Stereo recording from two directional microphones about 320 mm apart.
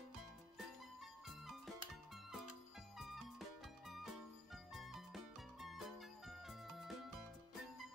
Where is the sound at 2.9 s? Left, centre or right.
Centre.